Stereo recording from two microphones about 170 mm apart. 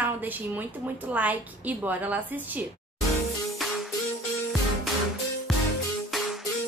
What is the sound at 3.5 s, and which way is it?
Music, centre (ahead or behind).